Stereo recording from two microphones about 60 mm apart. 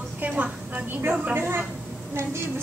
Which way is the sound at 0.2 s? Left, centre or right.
Right.